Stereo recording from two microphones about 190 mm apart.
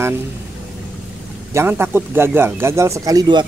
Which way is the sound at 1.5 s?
10° right (ahead or behind).